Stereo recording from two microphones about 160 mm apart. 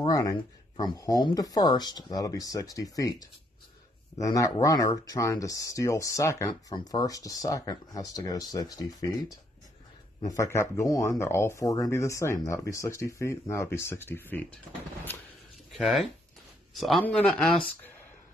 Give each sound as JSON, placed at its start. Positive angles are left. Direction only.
{"t": 0.0, "sound": "speech", "side_deg": 25}
{"t": 10.2, "sound": "speech", "side_deg": 20}
{"t": 15.7, "sound": "a man's voice", "side_deg": 0}